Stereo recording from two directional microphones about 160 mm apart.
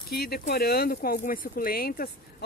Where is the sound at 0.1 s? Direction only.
75° left (ahead or behind).